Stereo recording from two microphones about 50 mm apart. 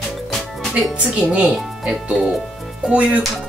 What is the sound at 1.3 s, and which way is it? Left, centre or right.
Speech, centre.